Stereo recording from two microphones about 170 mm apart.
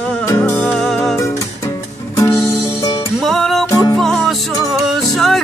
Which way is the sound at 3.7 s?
20° left (ahead or behind).